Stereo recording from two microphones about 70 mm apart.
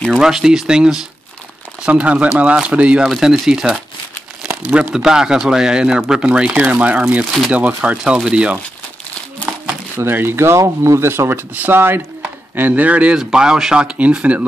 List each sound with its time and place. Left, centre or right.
0.2 s speech: centre
4.9 s speech: centre
9.9 s speech: right